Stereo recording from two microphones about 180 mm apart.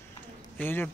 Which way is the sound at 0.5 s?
10° left (ahead or behind).